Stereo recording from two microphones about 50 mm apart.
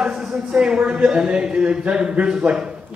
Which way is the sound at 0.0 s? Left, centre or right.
Centre.